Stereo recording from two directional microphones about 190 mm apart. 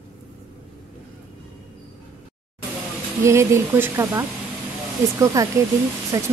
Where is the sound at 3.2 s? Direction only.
15° right (ahead or behind).